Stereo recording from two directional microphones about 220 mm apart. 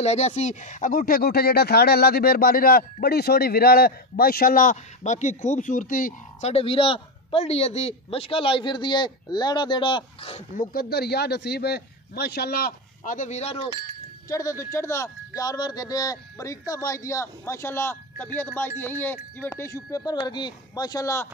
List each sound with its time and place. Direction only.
0.0 s speech: 30° left (ahead or behind)
10.6 s a man's voice: 40° left (ahead or behind)
14.3 s speech: 15° left (ahead or behind)